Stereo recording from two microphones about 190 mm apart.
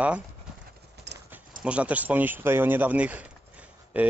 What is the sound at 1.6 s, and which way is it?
Speech, 5° right (ahead or behind).